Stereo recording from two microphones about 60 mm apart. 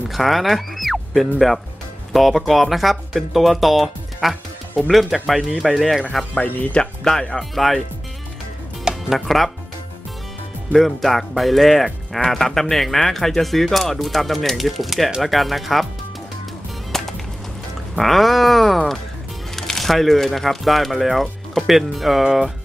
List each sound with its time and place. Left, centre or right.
0.1 s speech: centre
6.4 s speech: left
7.3 s speech: centre
8.8 s speech: centre
10.7 s speech: centre
16.9 s music: centre
17.9 s speech: centre